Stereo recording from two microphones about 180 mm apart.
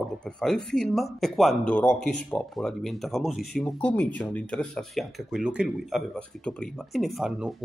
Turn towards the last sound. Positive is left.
turn(degrees=-5)  # may be behind; listen again after turning